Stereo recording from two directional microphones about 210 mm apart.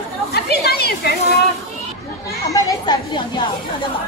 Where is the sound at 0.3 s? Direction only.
50° left (ahead or behind).